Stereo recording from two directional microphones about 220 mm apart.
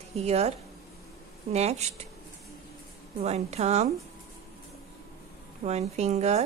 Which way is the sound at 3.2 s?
30° right (ahead or behind).